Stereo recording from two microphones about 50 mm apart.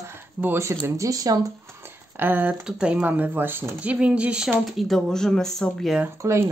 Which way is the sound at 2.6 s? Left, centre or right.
Right.